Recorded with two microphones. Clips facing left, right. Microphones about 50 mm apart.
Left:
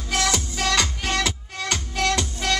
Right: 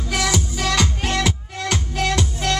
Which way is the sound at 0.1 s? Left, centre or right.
Centre.